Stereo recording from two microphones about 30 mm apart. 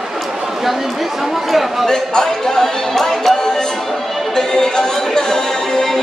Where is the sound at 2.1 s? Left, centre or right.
Centre.